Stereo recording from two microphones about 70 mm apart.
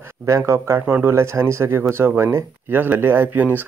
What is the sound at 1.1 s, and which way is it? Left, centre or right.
Speech, right.